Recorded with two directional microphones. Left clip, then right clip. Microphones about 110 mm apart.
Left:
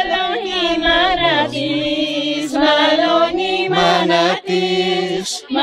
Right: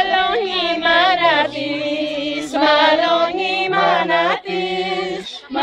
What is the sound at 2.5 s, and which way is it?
Female singing, 15° right (ahead or behind).